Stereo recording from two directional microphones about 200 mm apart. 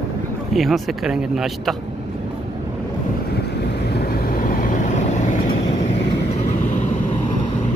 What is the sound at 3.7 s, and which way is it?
Vehicle, 55° left (ahead or behind).